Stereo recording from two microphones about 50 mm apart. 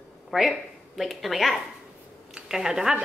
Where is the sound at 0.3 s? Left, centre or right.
Centre.